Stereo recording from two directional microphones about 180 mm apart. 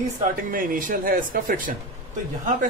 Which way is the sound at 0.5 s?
50° right (ahead or behind).